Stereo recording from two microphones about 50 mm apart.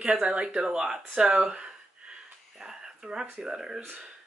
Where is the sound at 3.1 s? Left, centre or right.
Centre.